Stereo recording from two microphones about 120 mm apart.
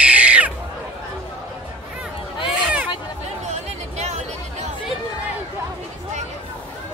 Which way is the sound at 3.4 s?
70° right (ahead or behind).